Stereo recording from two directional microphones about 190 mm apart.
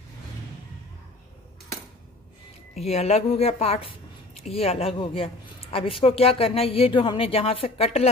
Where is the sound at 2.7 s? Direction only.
35° left (ahead or behind).